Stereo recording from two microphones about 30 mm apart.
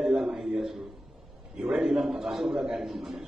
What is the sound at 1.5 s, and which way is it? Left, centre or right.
A man's voice, centre.